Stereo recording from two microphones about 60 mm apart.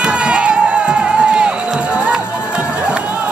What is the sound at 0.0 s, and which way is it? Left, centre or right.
Music, centre.